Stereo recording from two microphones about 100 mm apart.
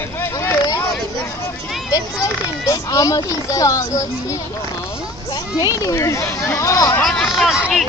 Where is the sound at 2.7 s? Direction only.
35° left (ahead or behind).